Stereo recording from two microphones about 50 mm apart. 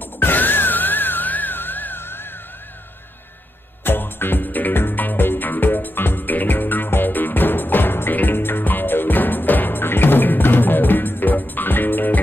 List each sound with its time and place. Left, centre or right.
0.2 s music: left
3.8 s music: left